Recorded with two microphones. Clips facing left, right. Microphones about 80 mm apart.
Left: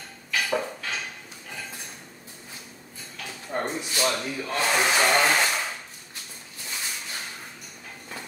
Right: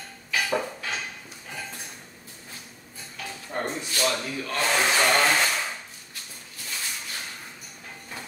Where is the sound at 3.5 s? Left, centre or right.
Centre.